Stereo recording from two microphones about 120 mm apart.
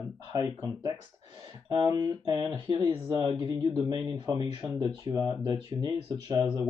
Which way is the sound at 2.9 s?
40° right (ahead or behind).